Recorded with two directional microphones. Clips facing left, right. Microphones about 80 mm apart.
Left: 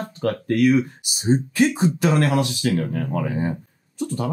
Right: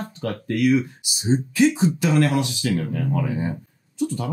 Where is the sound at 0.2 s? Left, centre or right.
Left.